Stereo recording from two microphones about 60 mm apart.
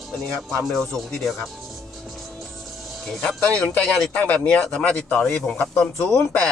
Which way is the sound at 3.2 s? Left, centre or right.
Centre.